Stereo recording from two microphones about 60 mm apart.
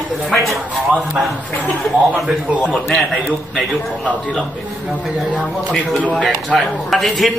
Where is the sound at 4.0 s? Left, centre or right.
Centre.